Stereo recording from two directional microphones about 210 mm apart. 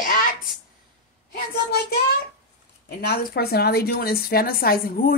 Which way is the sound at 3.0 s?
50° left (ahead or behind).